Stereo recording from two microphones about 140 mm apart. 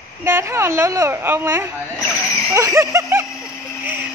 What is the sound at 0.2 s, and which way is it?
Speech, 20° right (ahead or behind).